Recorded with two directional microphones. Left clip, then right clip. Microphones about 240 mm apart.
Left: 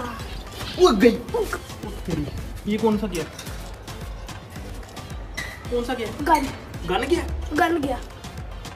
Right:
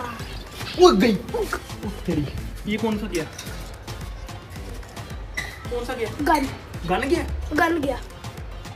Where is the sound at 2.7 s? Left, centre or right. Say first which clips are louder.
Left 1 dB; left.